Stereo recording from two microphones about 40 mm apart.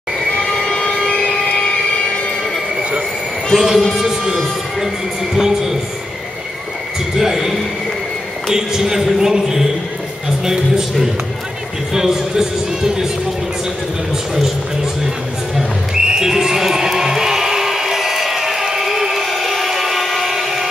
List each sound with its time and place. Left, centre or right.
0.3 s train: centre
1.3 s a sound: left
3.5 s speech: centre
7.2 s a sound: centre
8.5 s a man's voice: centre
16.1 s crowd: centre